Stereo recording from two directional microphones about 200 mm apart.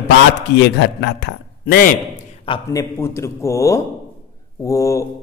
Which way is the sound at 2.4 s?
25° left (ahead or behind).